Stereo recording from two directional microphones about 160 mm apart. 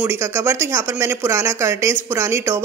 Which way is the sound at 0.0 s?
15° right (ahead or behind).